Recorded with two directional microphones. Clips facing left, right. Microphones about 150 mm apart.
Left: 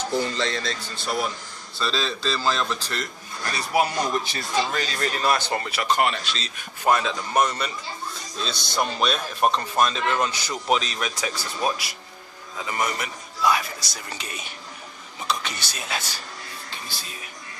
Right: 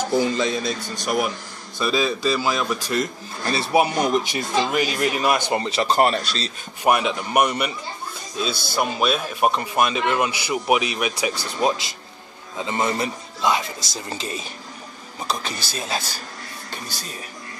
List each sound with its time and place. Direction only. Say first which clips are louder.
0.1 s a man's voice: right 5 dB; 10° right (ahead or behind)
3.5 s speech: right 4 dB; 25° right (ahead or behind)
6.8 s a man's voice: right 2 dB; 15° right (ahead or behind); by 17.1 s 40° right (ahead or behind)